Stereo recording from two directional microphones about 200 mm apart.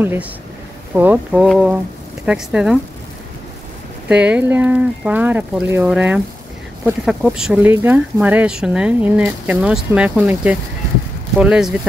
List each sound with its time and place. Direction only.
0.0 s speech: 10° right (ahead or behind)
4.1 s speech: 5° right (ahead or behind)
7.2 s speech: 5° right (ahead or behind)